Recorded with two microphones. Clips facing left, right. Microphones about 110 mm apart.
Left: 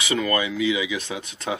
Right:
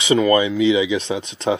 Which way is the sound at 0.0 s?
25° right (ahead or behind).